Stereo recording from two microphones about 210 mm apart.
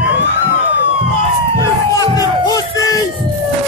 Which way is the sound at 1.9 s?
15° left (ahead or behind).